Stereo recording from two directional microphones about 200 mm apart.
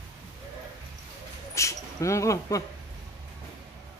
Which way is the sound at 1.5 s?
15° left (ahead or behind).